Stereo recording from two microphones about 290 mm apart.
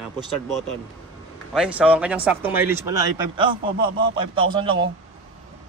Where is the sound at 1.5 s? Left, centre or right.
Centre.